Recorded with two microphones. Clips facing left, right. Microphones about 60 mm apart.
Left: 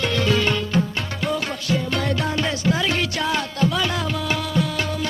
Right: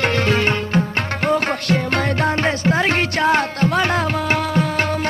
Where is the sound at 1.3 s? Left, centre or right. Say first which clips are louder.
Right 6 dB; right.